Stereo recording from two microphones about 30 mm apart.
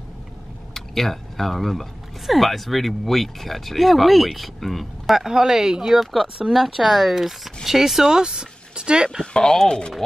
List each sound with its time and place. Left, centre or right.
0.7 s speech: centre
5.1 s speech: centre
8.2 s speech: right
9.2 s speech: left